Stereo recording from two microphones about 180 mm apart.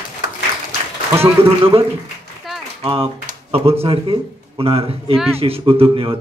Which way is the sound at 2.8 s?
30° right (ahead or behind).